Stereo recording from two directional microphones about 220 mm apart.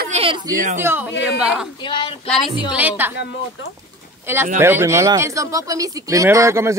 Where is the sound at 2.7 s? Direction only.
10° right (ahead or behind).